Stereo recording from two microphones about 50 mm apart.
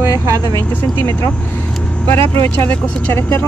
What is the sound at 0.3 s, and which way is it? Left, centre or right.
Speech, left.